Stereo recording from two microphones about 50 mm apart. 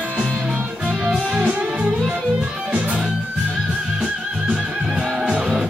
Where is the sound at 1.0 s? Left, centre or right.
Centre.